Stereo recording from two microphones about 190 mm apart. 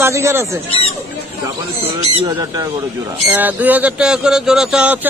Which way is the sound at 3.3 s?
10° right (ahead or behind).